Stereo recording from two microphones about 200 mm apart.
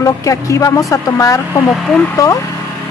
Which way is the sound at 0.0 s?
15° left (ahead or behind).